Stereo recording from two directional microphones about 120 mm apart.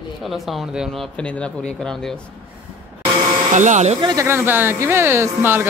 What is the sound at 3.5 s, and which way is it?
Speech, 90° right.